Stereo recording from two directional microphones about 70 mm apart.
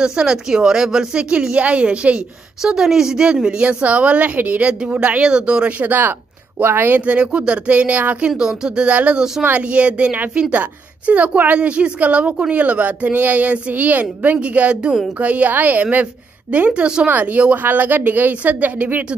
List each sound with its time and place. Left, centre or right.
0.0 s a woman's voice: centre; by 7.2 s right
7.2 s a woman's voice: centre
8.3 s a woman's voice: centre